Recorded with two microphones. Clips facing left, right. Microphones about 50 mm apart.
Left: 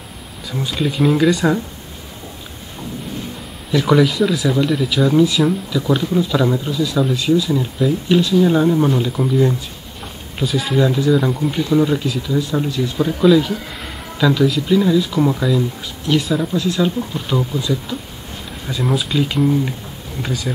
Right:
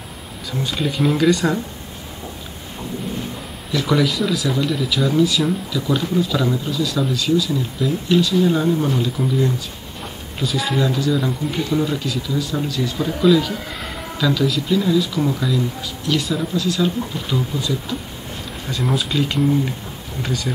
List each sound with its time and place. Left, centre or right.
0.5 s speech: centre
3.7 s speech: centre
10.4 s speech: centre
10.8 s speech: centre
12.4 s speech: left
12.9 s speech: centre
18.7 s speech: centre